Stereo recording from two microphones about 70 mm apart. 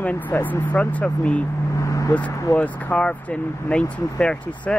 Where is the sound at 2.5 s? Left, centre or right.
Left.